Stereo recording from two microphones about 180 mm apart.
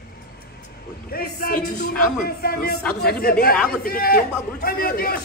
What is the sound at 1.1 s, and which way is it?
A man's voice, 55° left (ahead or behind).